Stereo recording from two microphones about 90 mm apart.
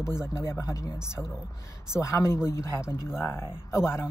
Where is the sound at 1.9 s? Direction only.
35° left (ahead or behind).